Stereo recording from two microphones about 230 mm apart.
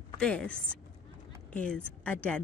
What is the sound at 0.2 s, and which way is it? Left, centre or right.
Speech, centre.